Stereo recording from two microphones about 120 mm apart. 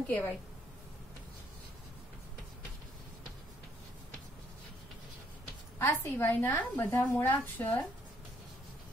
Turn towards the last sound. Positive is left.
turn(degrees=15)  # may be behind; listen again after turning